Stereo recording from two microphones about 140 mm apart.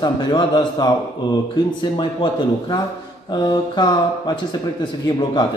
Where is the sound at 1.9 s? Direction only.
35° left (ahead or behind).